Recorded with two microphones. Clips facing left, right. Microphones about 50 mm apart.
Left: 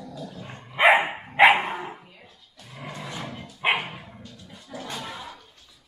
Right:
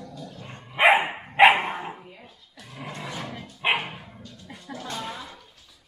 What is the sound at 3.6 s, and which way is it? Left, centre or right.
Dog, centre.